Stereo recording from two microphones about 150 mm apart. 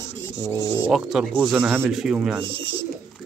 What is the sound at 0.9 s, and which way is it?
Speech, 5° right (ahead or behind).